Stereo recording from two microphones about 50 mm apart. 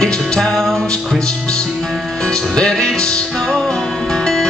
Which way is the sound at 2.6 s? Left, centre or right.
Centre.